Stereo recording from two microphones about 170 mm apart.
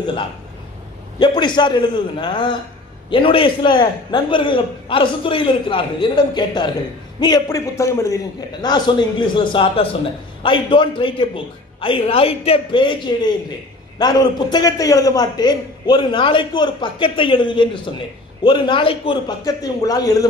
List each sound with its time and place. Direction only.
1.2 s a man's voice: 25° left (ahead or behind)